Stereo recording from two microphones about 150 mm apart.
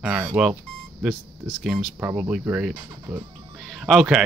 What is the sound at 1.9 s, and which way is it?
Speech, 15° right (ahead or behind).